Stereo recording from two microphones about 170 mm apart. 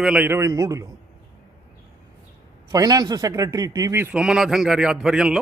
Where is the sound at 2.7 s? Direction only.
20° right (ahead or behind).